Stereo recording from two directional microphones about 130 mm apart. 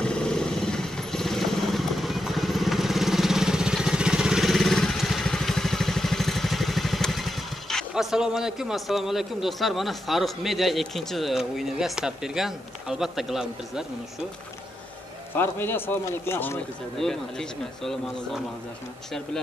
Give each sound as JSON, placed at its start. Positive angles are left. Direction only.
{"t": 0.0, "sound": "vehicle", "side_deg": 5}
{"t": 15.3, "sound": "a man's voice", "side_deg": 15}
{"t": 17.0, "sound": "speech", "side_deg": 5}